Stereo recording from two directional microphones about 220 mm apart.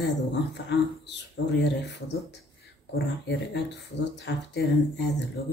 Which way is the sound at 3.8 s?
50° left (ahead or behind).